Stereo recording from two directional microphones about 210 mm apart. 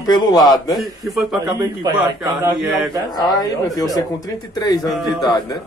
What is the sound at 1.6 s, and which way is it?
Speech, 20° right (ahead or behind).